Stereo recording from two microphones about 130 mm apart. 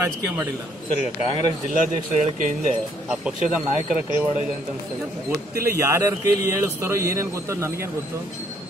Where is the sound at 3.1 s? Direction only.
5° right (ahead or behind).